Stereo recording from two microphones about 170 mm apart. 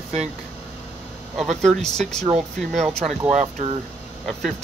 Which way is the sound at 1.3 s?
Centre (ahead or behind).